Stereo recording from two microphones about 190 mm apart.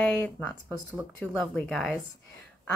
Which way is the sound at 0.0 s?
10° left (ahead or behind).